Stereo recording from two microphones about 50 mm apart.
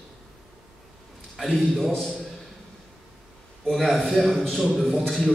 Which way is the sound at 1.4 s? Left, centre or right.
Centre.